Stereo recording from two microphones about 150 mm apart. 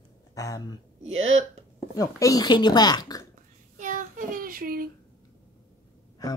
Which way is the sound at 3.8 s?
60° right (ahead or behind).